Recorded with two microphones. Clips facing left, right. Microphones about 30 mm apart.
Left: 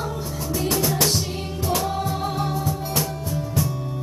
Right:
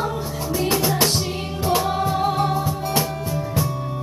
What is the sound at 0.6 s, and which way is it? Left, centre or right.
Music, right.